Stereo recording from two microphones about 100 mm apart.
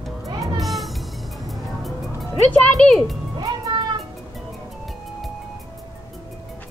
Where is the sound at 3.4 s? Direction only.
40° right (ahead or behind).